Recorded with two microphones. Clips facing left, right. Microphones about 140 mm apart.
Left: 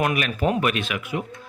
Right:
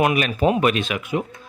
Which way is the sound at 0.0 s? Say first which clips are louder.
Right 4 dB; 25° right (ahead or behind).